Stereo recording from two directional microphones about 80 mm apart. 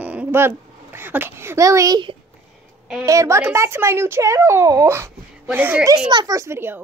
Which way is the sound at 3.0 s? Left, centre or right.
Right.